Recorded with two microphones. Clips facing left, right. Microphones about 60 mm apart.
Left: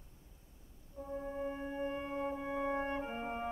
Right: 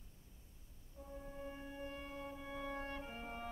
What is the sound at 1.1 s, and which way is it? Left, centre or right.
Music, left.